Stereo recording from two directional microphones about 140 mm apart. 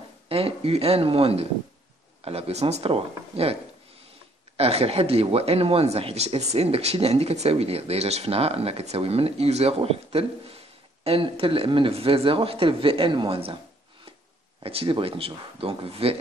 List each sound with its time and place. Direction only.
0.3 s speech: 45° right (ahead or behind)
4.6 s speech: 45° right (ahead or behind)
14.6 s speech: 40° right (ahead or behind)